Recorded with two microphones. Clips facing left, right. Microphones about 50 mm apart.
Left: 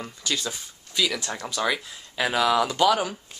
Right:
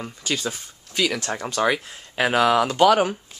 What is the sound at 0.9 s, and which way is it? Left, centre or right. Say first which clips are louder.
Speech: right 3 dB; right.